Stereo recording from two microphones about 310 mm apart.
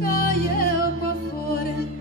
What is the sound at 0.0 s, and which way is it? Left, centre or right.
Music, left.